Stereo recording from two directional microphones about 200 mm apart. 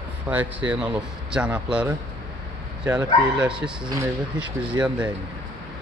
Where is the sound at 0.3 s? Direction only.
5° right (ahead or behind).